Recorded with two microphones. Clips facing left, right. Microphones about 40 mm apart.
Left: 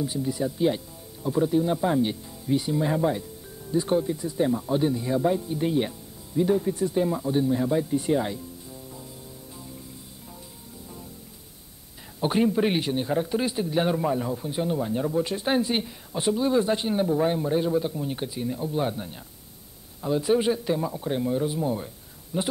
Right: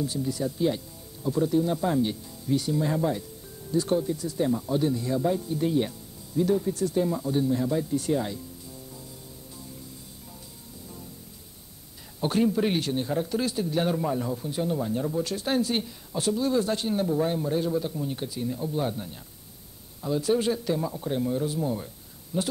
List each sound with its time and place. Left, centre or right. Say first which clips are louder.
0.0 s speech: left 1 dB; left
12.2 s speech: left 2 dB; centre